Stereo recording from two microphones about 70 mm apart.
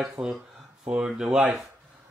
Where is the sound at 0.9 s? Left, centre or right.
Centre.